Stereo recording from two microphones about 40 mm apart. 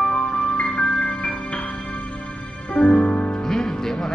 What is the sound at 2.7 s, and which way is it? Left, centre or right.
Music, left.